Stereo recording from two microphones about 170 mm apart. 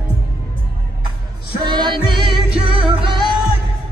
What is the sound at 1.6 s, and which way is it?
Music, 25° right (ahead or behind).